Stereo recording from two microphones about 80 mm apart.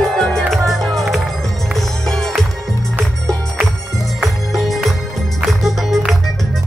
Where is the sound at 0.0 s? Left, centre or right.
Centre.